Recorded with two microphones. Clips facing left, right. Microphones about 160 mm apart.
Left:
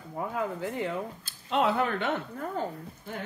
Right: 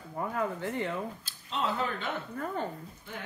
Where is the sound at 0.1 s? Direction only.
5° left (ahead or behind).